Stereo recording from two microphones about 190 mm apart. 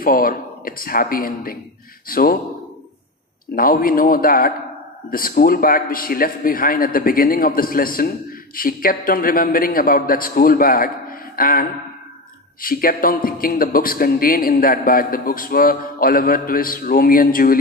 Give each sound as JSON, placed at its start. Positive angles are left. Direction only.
{"t": 0.0, "sound": "a man's voice", "side_deg": 50}
{"t": 3.5, "sound": "a man's voice", "side_deg": 50}
{"t": 12.6, "sound": "a man's voice", "side_deg": 50}